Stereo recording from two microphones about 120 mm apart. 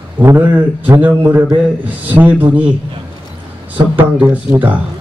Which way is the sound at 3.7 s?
15° right (ahead or behind).